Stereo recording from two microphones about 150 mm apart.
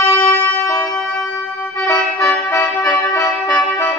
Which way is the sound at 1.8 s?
20° left (ahead or behind).